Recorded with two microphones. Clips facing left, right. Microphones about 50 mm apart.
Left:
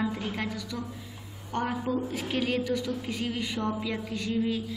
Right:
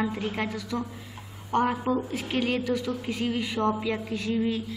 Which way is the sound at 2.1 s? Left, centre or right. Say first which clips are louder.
Right 2 dB; centre.